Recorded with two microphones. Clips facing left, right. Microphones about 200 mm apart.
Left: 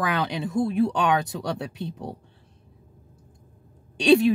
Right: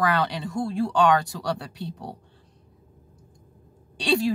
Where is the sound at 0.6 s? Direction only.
20° left (ahead or behind).